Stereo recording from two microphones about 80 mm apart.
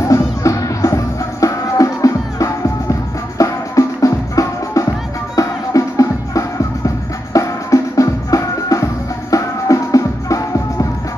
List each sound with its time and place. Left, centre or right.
0.0 s music: left